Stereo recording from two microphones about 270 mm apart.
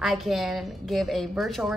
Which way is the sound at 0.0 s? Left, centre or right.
Centre.